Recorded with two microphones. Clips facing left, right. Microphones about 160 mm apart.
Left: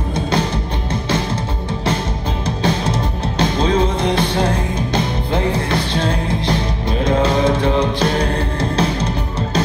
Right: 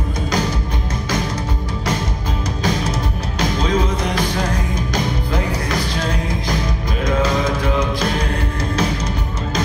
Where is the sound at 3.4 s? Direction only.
30° left (ahead or behind).